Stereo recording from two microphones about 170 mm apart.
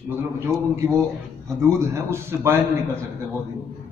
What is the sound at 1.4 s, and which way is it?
A man's voice, 15° right (ahead or behind).